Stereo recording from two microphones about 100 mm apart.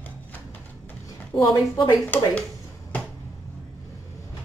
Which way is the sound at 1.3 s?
Centre (ahead or behind).